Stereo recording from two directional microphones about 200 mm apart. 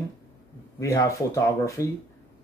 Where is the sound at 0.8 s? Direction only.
15° left (ahead or behind).